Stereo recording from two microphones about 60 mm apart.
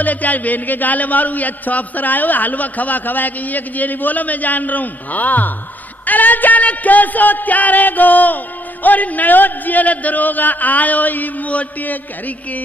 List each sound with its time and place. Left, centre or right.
0.0 s a man's voice: left